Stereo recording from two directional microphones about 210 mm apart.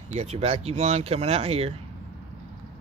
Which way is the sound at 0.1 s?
30° right (ahead or behind).